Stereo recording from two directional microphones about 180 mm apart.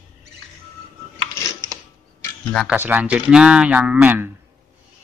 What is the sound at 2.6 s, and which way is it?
A man's voice, 10° right (ahead or behind).